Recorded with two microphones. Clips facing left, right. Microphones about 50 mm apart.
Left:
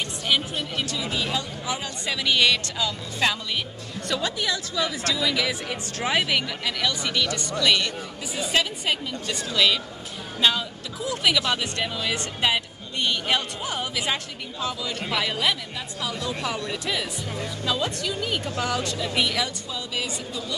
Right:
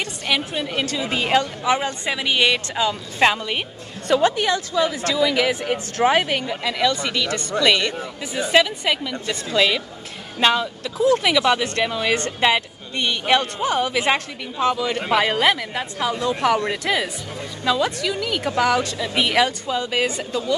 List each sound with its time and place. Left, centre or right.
0.0 s a woman's voice: right
11.0 s a woman's voice: right
11.6 s a woman's voice: right
13.3 s speech: right
17.6 s speech: right
19.3 s speech: right
19.8 s speech: right